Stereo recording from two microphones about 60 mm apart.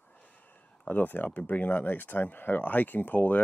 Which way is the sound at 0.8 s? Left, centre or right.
Left.